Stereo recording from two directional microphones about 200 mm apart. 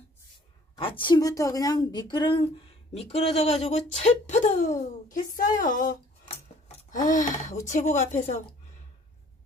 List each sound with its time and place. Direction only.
0.7 s a woman's voice: 25° left (ahead or behind)
6.7 s a sound: 30° left (ahead or behind)
7.1 s a woman's voice: 40° left (ahead or behind)